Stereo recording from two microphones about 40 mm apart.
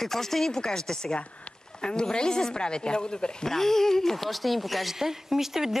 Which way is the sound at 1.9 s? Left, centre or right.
Left.